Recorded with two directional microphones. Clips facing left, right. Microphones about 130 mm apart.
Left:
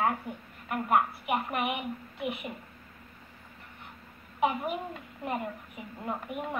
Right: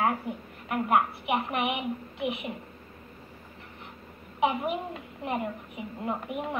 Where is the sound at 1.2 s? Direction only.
20° right (ahead or behind).